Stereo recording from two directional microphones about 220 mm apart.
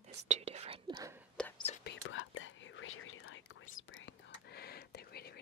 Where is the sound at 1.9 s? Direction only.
65° left (ahead or behind).